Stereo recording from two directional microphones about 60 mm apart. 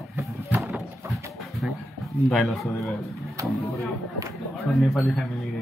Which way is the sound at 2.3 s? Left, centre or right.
Centre.